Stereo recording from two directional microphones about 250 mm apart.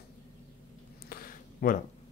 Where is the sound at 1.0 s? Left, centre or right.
Left.